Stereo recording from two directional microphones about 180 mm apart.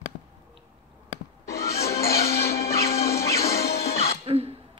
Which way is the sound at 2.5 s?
60° left (ahead or behind).